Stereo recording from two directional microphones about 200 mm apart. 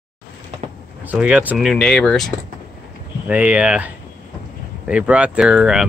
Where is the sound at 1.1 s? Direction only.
5° right (ahead or behind).